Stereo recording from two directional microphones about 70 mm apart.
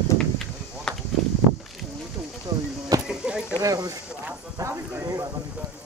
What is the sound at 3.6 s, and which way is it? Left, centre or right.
Speech, right.